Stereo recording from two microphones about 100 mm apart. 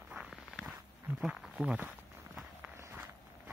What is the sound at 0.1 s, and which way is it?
Walk, 5° right (ahead or behind).